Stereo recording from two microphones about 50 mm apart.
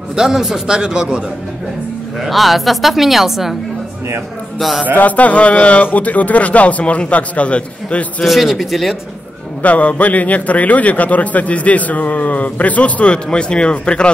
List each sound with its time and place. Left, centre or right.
0.1 s a man's voice: centre
2.2 s a woman's voice: centre
4.6 s a woman's voice: centre
4.9 s a man's voice: left
8.2 s a woman's voice: centre
9.6 s a man's voice: left